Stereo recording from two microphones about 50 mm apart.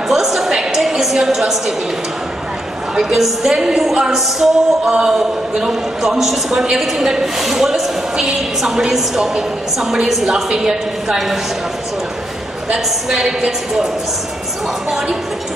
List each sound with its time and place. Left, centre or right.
0.1 s a sound: centre
3.0 s a man's voice: centre
12.6 s a man's voice: centre